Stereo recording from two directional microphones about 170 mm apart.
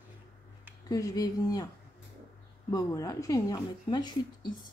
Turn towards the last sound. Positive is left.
turn(degrees=25)  # may be behind; listen again after turning